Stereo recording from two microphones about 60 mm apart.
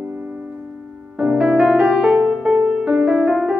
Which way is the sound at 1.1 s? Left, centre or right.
Centre.